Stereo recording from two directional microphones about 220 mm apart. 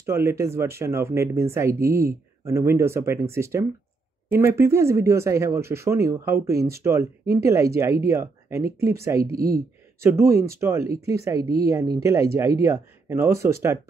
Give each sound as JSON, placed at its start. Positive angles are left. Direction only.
{"t": 0.0, "sound": "speech", "side_deg": -10}
{"t": 9.2, "sound": "speech", "side_deg": -45}
{"t": 10.0, "sound": "speech", "side_deg": -10}